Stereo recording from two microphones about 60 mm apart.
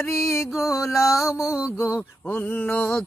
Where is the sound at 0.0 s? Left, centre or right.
Left.